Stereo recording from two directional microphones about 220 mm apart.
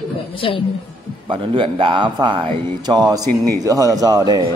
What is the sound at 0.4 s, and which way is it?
Speech, 25° left (ahead or behind).